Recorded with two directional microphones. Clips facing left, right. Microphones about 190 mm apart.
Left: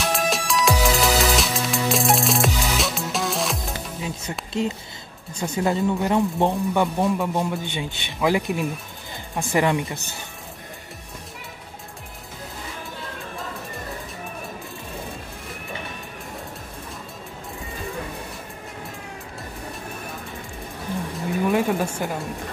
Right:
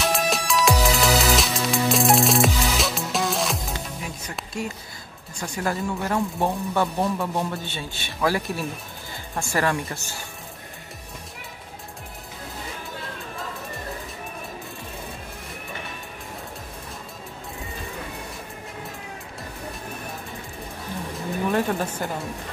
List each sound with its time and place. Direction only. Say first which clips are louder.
0.0 s music: even; centre (ahead or behind)
4.0 s music: left 4 dB; 25° left (ahead or behind)
4.6 s speech: left 7 dB; 20° left (ahead or behind)
21.5 s speech: left 2 dB; 10° left (ahead or behind)